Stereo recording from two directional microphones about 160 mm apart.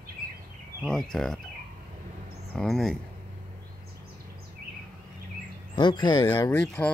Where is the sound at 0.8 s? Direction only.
5° left (ahead or behind).